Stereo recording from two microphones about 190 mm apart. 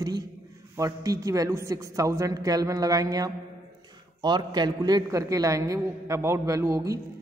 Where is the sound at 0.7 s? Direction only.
15° right (ahead or behind).